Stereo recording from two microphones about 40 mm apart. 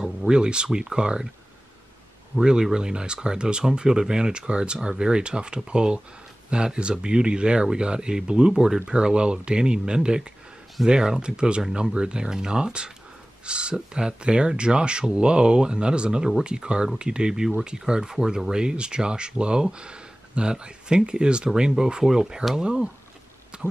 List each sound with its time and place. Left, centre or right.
0.3 s speech: right
2.3 s speech: centre
23.5 s a sound: right